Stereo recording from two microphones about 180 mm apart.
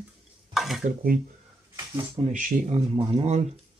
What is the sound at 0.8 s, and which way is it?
Speech, 50° right (ahead or behind).